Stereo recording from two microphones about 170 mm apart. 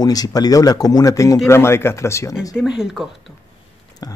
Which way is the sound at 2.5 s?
5° right (ahead or behind).